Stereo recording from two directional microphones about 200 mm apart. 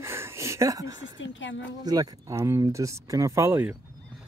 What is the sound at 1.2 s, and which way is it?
Speech, 70° left (ahead or behind).